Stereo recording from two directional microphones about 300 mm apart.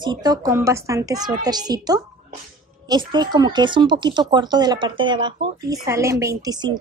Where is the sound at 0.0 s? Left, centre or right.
Centre.